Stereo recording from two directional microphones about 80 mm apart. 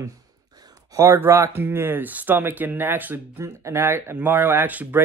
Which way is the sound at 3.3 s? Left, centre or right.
Right.